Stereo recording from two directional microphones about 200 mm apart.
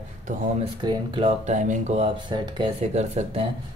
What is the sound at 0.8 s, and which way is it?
Speech, 25° right (ahead or behind).